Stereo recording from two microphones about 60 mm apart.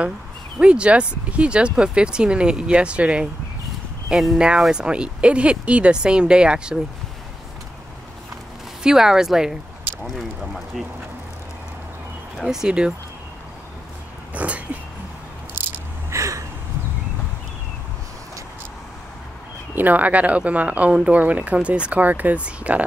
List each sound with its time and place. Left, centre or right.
0.6 s speech: centre
4.1 s speech: centre
8.8 s speech: centre
12.4 s speech: centre
14.3 s a sound: right
16.1 s a sound: right
19.7 s speech: right